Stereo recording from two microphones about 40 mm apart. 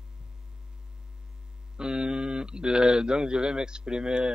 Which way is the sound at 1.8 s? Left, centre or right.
Centre.